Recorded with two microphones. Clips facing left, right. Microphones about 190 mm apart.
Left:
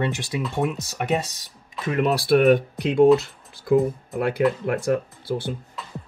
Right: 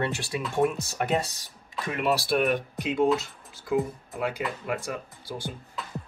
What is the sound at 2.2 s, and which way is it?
Speech, 60° left (ahead or behind).